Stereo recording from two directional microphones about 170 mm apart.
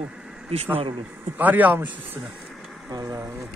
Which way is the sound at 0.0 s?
5° right (ahead or behind).